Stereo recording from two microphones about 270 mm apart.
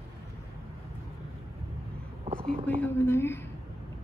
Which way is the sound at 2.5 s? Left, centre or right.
Centre.